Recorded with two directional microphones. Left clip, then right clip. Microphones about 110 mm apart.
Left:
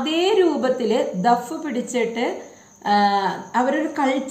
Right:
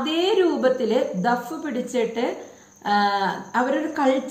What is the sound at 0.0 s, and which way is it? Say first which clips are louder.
A woman's voice: left 2 dB; 30° left (ahead or behind).